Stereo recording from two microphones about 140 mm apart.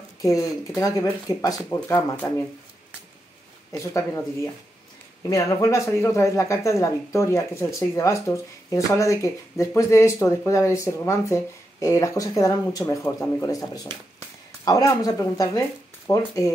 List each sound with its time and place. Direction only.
0.2 s speech: 25° left (ahead or behind)
3.7 s speech: 20° left (ahead or behind)
5.3 s speech: 20° left (ahead or behind)